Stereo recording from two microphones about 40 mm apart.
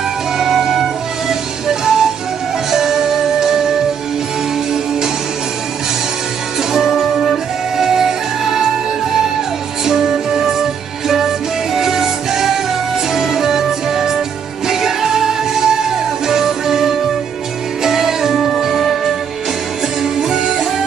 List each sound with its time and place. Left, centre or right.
0.4 s music: centre
6.7 s music: centre
9.8 s music: centre
18.3 s music: centre
20.0 s music: centre